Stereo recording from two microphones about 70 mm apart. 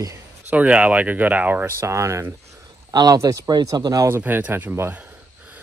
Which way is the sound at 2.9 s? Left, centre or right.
Right.